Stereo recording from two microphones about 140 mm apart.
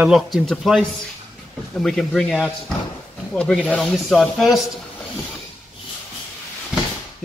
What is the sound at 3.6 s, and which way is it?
Speech, 5° left (ahead or behind).